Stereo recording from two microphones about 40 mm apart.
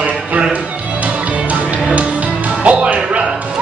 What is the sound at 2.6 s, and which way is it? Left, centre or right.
Music, right.